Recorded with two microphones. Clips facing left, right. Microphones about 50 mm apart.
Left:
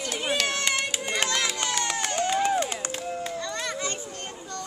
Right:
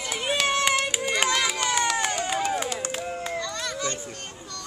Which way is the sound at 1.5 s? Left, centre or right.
Centre.